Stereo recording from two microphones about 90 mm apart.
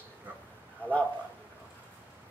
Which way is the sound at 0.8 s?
20° left (ahead or behind).